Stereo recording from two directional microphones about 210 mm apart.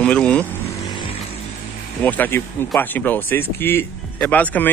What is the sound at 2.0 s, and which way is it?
Speech, 10° left (ahead or behind).